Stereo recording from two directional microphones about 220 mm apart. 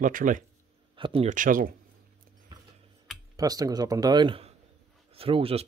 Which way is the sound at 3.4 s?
15° right (ahead or behind).